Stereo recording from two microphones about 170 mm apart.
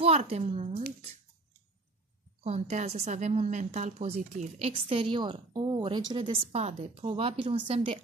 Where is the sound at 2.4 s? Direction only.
40° right (ahead or behind).